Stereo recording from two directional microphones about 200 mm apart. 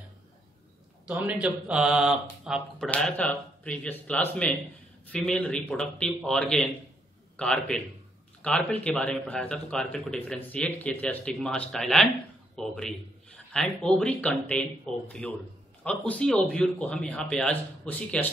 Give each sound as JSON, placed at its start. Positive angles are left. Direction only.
{"t": 1.0, "sound": "speech", "side_deg": -5}